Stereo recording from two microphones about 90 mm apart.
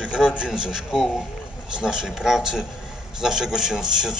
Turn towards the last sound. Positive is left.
turn(degrees=-5)  # may be behind; listen again after turning